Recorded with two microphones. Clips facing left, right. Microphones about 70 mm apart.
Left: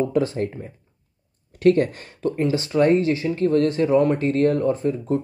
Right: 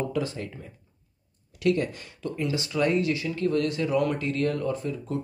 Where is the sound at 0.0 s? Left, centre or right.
Left.